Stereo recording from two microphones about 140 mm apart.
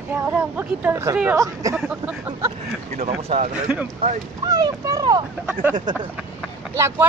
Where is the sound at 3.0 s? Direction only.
50° right (ahead or behind).